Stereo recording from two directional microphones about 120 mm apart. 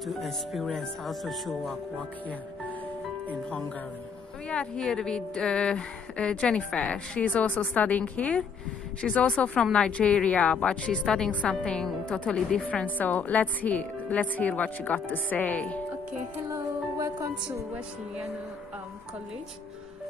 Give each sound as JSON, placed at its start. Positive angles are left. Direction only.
{"t": 0.0, "sound": "speech", "side_deg": 0}
{"t": 3.4, "sound": "speech", "side_deg": 10}
{"t": 16.4, "sound": "music", "side_deg": -25}
{"t": 17.7, "sound": "speech", "side_deg": -10}